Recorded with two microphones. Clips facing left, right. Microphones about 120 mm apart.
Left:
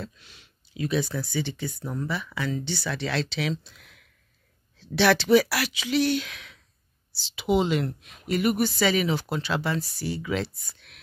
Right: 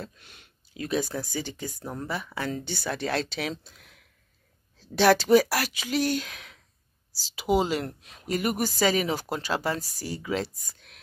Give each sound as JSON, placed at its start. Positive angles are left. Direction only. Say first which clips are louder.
{"t": 0.0, "sound": "a woman's voice", "louder": "left 2 dB", "side_deg": -50}